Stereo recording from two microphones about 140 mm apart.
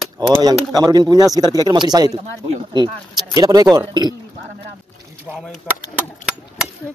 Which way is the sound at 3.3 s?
25° right (ahead or behind).